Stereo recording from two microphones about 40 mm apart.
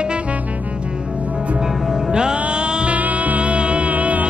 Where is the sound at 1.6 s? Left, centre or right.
Centre.